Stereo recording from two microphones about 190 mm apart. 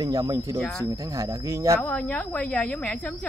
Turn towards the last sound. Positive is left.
turn(degrees=10)  # may be behind; listen again after turning